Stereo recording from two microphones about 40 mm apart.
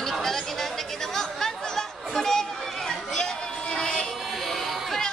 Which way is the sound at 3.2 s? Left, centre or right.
Centre.